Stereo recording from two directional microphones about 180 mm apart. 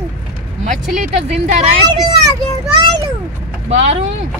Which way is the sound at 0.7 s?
40° right (ahead or behind).